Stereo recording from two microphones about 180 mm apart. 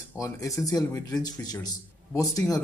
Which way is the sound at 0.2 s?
20° left (ahead or behind).